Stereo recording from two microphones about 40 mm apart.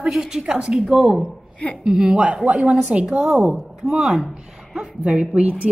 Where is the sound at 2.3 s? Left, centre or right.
Right.